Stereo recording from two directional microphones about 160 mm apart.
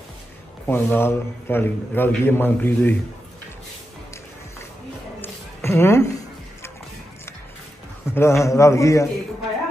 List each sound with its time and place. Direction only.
0.7 s a man's voice: 15° left (ahead or behind)
5.2 s a sound: 15° left (ahead or behind)
8.1 s a man's voice: 15° left (ahead or behind)